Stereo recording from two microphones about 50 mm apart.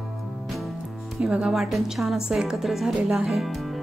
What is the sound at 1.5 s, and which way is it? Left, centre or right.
A woman's voice, centre.